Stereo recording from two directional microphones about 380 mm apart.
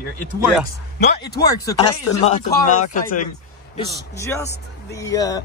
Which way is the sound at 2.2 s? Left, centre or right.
Centre.